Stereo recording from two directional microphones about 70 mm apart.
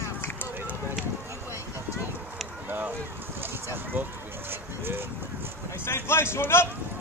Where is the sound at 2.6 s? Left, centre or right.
Right.